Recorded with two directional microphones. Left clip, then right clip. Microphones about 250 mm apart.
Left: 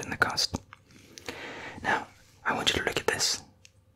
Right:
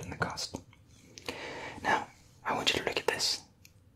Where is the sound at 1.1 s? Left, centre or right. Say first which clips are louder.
Left 1 dB; centre.